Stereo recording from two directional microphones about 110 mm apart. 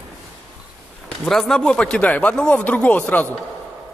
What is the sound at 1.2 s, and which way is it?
Speech, 5° left (ahead or behind).